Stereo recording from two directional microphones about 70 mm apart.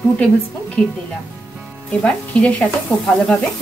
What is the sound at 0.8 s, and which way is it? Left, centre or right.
A woman's voice, centre.